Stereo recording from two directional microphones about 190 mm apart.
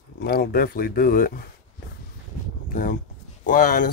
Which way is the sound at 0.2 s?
55° left (ahead or behind).